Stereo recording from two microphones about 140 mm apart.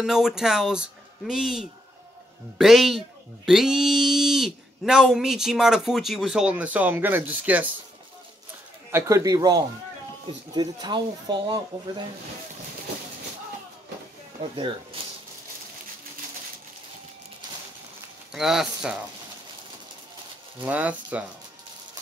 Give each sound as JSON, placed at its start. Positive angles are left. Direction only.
{"t": 0.0, "sound": "speech", "side_deg": -5}
{"t": 8.9, "sound": "speech", "side_deg": -20}
{"t": 14.4, "sound": "speech", "side_deg": -35}
{"t": 18.3, "sound": "speech", "side_deg": -5}
{"t": 20.6, "sound": "speech", "side_deg": -10}